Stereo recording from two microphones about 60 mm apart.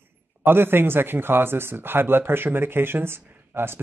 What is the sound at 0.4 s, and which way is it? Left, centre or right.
Speech, right.